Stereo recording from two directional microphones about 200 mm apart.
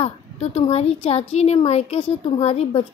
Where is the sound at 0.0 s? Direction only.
30° left (ahead or behind).